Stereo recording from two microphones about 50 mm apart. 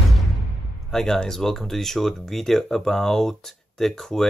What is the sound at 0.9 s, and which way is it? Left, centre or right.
Speech, centre.